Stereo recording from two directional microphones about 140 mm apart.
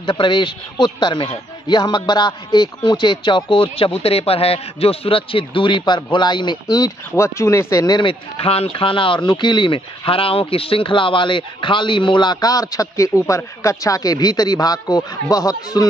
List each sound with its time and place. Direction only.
0.0 s speech: 35° left (ahead or behind)